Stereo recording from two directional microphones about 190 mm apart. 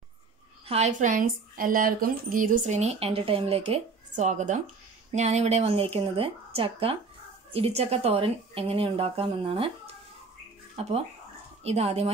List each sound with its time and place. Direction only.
0.7 s a woman's voice: 35° right (ahead or behind)
10.8 s speech: 30° right (ahead or behind)